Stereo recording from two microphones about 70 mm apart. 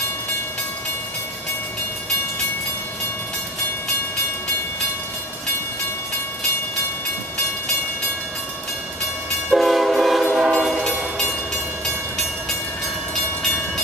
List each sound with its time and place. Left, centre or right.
9.5 s train: centre